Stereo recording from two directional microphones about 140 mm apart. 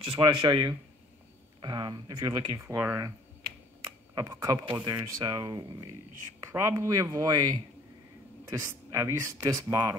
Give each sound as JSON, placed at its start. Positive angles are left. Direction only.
{"t": 0.2, "sound": "speech", "side_deg": -30}
{"t": 2.8, "sound": "speech", "side_deg": -20}
{"t": 3.8, "sound": "computer keyboard", "side_deg": -25}
{"t": 4.6, "sound": "speech", "side_deg": -30}